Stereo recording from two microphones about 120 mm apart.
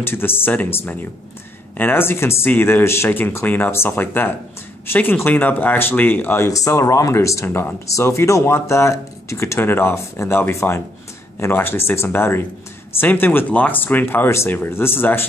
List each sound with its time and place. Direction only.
0.0 s speech: 20° left (ahead or behind)